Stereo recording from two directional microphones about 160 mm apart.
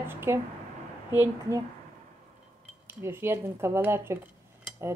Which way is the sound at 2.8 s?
15° right (ahead or behind).